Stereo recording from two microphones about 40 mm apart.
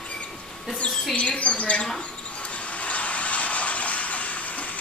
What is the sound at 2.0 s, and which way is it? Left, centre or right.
Vehicle, left.